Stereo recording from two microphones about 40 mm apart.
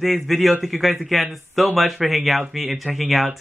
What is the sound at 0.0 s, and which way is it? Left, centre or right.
Speech, centre.